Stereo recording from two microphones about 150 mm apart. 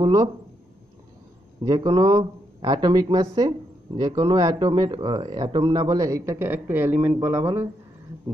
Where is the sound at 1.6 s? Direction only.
25° right (ahead or behind).